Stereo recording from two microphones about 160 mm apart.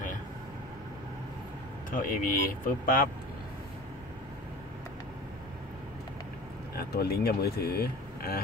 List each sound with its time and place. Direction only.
1.9 s speech: 60° left (ahead or behind)
6.7 s speech: 75° left (ahead or behind)